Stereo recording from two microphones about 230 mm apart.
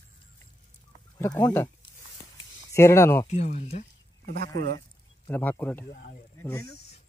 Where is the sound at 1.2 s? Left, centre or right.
Centre.